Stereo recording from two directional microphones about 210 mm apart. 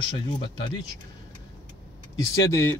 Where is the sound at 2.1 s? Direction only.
15° left (ahead or behind).